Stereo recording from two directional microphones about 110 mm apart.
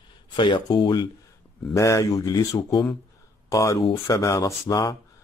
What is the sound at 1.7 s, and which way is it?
Speech, 30° left (ahead or behind).